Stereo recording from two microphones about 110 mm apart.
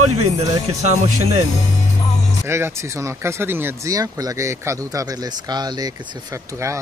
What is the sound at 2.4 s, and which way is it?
Speech, 25° right (ahead or behind).